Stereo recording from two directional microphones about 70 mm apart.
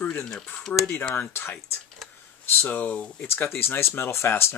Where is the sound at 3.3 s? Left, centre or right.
Left.